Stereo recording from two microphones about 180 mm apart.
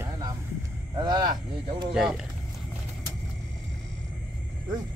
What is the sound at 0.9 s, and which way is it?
Speech, 25° right (ahead or behind).